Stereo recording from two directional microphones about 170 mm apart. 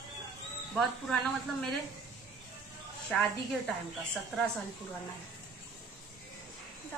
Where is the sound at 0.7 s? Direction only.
Centre (ahead or behind).